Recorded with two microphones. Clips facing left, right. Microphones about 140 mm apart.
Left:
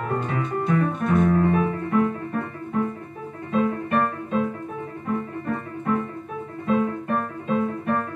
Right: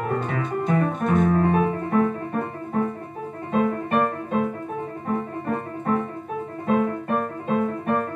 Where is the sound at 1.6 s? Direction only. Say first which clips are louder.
Right 1 dB; 40° right (ahead or behind).